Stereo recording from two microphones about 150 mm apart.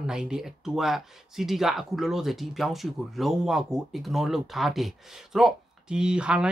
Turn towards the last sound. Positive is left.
turn(degrees=-5)  # may be behind; listen again after turning